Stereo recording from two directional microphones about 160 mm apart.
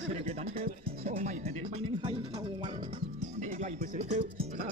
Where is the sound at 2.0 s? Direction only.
30° right (ahead or behind).